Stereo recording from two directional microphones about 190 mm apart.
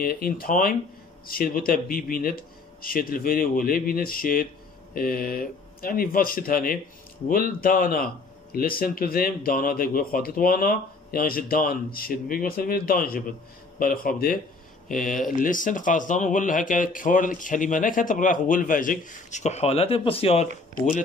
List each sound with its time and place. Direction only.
0.0 s a man's voice: 50° left (ahead or behind); by 20.4 s 30° left (ahead or behind)